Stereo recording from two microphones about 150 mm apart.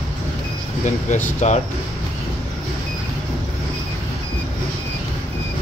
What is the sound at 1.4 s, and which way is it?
Speech, 50° left (ahead or behind).